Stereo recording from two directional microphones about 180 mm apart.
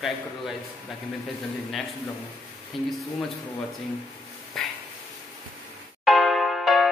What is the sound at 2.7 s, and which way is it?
Speech, centre (ahead or behind).